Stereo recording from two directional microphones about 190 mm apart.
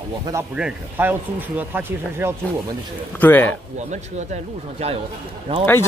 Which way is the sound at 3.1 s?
10° left (ahead or behind).